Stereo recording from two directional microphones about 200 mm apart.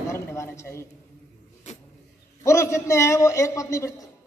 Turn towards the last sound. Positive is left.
turn(degrees=15)  # may be behind; listen again after turning